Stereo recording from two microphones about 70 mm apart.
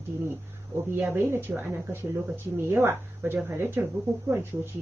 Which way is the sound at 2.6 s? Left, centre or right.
Right.